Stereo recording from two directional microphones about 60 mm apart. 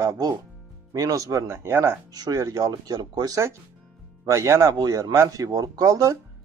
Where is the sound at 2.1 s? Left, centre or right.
Right.